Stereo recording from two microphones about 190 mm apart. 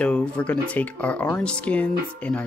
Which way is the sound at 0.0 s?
5° left (ahead or behind).